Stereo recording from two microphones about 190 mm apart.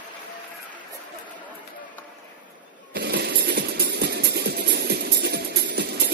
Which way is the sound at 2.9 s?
60° right (ahead or behind).